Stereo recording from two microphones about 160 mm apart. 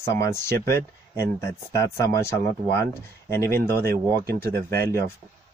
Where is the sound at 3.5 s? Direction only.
70° right (ahead or behind).